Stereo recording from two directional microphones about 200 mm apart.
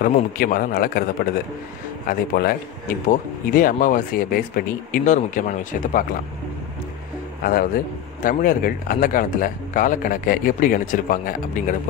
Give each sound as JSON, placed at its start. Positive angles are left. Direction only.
{"t": 0.0, "sound": "speech", "side_deg": 45}
{"t": 2.0, "sound": "speech", "side_deg": 45}
{"t": 7.4, "sound": "speech", "side_deg": 45}